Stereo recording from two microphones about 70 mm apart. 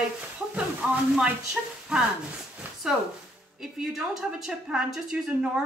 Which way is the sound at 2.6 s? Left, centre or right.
Right.